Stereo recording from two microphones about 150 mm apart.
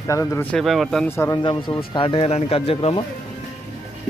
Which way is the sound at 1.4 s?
30° left (ahead or behind).